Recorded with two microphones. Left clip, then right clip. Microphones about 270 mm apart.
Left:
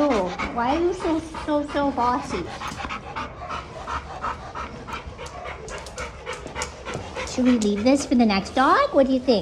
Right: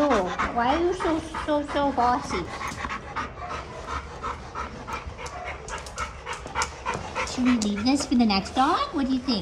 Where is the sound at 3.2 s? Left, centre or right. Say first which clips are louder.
Left 1 dB; centre.